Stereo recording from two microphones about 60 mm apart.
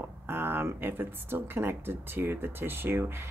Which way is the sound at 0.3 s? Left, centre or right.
Right.